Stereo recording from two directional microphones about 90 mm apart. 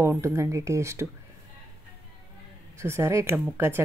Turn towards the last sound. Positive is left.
turn(degrees=-30)  # may be behind; listen again after turning